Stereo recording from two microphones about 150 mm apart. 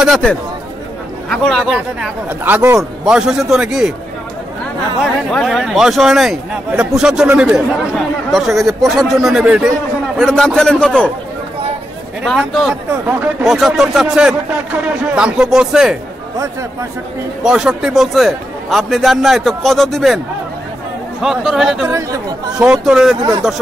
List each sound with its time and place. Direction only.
0.0 s a man's voice: centre (ahead or behind)
1.8 s a man's voice: 10° right (ahead or behind)
5.0 s a man's voice: centre (ahead or behind)
12.3 s a man's voice: centre (ahead or behind)
17.4 s a man's voice: 5° right (ahead or behind)
21.2 s a man's voice: centre (ahead or behind)
21.8 s speech: 20° right (ahead or behind)
22.8 s a man's voice: 5° right (ahead or behind)